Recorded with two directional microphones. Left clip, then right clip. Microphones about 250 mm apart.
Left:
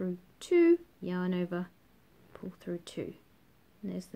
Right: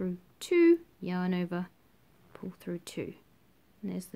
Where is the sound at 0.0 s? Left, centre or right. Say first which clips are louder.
Right 1 dB; right.